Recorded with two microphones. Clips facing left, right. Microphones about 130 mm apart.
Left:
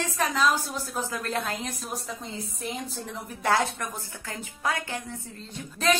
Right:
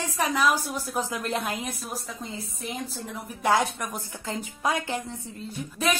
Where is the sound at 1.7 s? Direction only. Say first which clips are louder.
Even; centre (ahead or behind).